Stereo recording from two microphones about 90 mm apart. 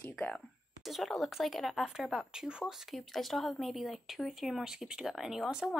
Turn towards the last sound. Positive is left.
turn(degrees=-5)  # may be behind; listen again after turning